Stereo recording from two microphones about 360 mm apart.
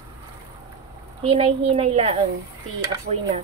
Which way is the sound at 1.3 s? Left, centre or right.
Centre.